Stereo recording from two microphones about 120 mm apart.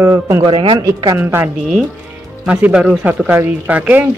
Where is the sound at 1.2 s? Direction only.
20° right (ahead or behind).